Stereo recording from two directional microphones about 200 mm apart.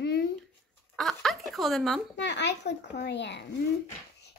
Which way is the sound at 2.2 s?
60° left (ahead or behind).